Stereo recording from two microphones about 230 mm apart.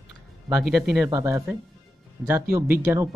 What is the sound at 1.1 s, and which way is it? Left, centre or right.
Speech, centre.